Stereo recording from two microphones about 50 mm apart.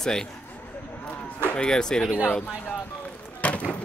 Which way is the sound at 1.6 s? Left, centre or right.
Centre.